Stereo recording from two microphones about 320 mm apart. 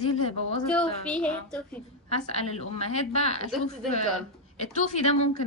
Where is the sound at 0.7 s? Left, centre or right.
Centre.